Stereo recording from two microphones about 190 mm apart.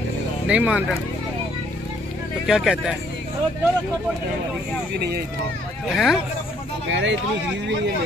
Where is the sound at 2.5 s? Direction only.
5° right (ahead or behind).